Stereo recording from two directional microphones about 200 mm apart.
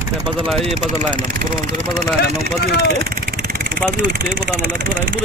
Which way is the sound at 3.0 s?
50° right (ahead or behind).